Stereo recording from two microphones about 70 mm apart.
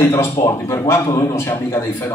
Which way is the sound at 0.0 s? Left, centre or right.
Left.